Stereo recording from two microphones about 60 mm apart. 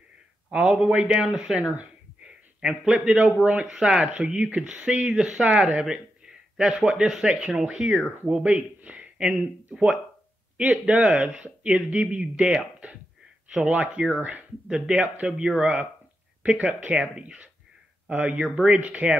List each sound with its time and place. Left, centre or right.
0.5 s speech: centre
10.6 s speech: right
16.4 s speech: right